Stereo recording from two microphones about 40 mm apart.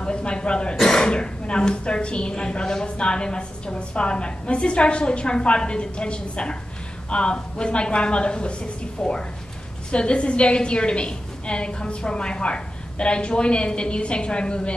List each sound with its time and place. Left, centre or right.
0.0 s a woman's voice: left